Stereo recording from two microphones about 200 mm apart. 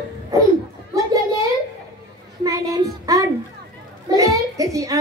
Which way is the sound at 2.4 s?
15° right (ahead or behind).